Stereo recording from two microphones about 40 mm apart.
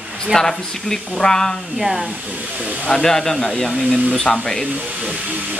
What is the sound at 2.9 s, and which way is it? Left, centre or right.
Speech, centre.